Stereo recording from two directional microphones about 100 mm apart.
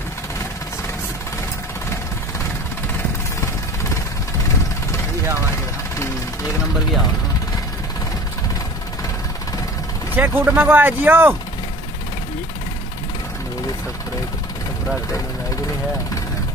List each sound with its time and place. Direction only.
10.1 s speech: 20° right (ahead or behind)